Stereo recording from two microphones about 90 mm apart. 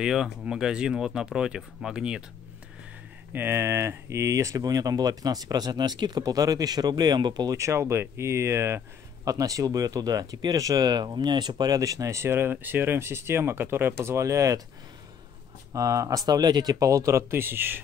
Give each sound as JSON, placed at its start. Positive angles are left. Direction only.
{"t": 0.0, "sound": "speech", "side_deg": -5}
{"t": 3.3, "sound": "speech", "side_deg": -25}
{"t": 7.5, "sound": "speech", "side_deg": -35}
{"t": 15.7, "sound": "speech", "side_deg": -40}